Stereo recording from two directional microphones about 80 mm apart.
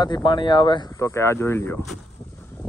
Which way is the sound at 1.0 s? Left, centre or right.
Left.